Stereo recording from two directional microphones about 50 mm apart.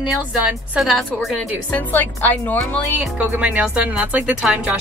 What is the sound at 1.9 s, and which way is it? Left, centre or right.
Speech, left.